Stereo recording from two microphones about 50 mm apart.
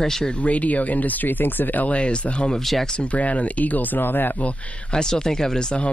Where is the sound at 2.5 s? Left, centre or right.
Centre.